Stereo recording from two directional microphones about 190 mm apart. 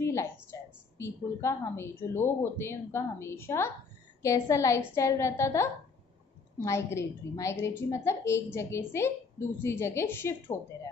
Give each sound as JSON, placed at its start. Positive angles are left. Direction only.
{"t": 0.0, "sound": "a woman's voice", "side_deg": 15}